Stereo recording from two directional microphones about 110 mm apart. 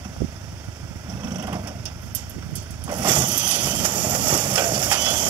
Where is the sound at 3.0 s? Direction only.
15° right (ahead or behind).